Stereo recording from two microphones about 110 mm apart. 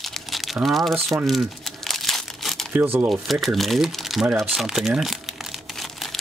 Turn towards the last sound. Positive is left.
turn(degrees=0)  # may be behind; listen again after turning